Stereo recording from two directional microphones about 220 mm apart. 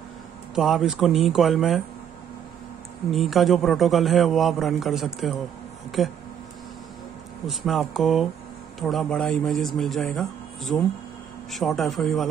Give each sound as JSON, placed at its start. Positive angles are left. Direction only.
{"t": 0.6, "sound": "a man's voice", "side_deg": 0}
{"t": 3.1, "sound": "a man's voice", "side_deg": 0}
{"t": 7.4, "sound": "a man's voice", "side_deg": 0}